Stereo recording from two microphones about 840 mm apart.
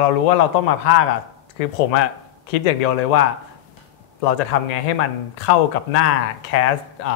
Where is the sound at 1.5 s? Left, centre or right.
Left.